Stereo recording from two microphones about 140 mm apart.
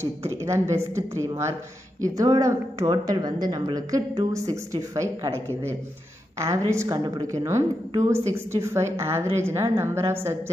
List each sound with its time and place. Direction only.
0.0 s a woman's voice: 20° right (ahead or behind)
6.7 s a woman's voice: 25° right (ahead or behind)